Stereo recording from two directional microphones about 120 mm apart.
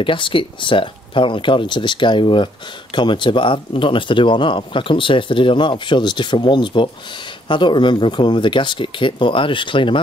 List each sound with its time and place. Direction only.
0.0 s speech: 45° left (ahead or behind)